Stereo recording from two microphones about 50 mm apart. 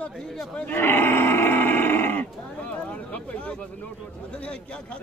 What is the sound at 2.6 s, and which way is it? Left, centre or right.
Speech, left.